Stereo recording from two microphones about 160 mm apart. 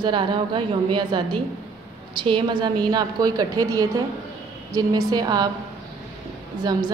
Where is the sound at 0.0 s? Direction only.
30° right (ahead or behind).